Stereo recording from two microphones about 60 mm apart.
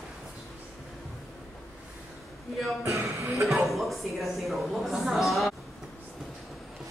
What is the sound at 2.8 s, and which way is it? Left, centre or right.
Music, right.